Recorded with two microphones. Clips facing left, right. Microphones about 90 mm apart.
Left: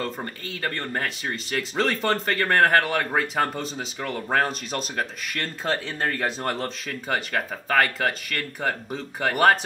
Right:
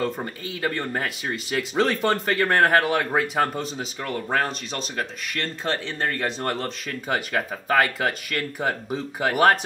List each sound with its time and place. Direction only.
0.0 s speech: 5° right (ahead or behind)